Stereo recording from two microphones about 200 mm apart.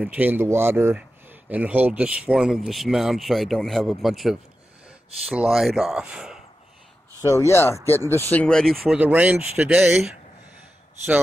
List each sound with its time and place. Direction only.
0.0 s speech: 10° right (ahead or behind)
7.2 s speech: 15° left (ahead or behind); by 10.1 s 5° right (ahead or behind)